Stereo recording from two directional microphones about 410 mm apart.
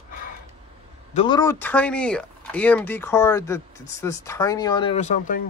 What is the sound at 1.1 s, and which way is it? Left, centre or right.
Speech, centre.